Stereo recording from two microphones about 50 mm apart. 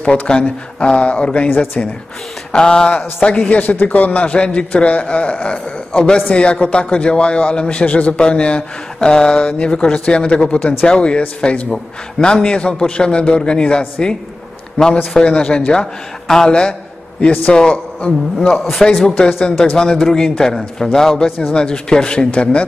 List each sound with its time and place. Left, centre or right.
0.0 s a man's voice: left
1.5 s speech: left
2.5 s a man's voice: centre
14.8 s a man's voice: left
17.2 s a man's voice: left
18.8 s a man's voice: centre; by 22.6 s left